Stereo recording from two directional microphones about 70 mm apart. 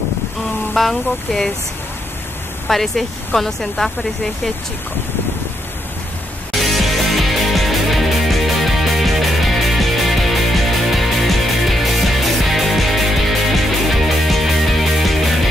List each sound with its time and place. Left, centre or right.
0.7 s speech: centre
2.7 s speech: centre
6.5 s music: centre